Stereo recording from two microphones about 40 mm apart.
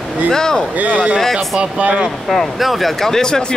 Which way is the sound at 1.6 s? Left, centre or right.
Right.